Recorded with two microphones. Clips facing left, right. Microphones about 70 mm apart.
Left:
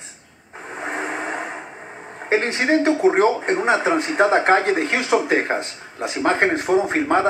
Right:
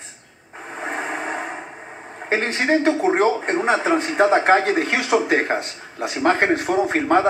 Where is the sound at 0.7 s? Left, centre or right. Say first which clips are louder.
Even; centre.